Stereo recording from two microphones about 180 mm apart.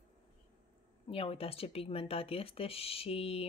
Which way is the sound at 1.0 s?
30° left (ahead or behind).